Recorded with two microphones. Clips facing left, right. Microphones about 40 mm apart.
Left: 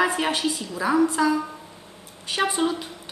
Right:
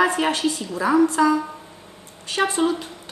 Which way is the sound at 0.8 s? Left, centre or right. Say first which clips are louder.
Right 3 dB; centre.